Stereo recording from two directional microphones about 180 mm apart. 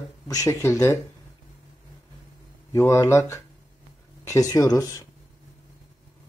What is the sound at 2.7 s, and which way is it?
Speech, 15° left (ahead or behind).